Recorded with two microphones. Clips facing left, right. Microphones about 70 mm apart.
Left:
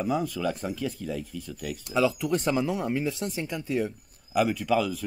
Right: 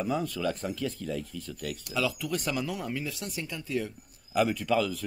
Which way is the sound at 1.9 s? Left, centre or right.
Left.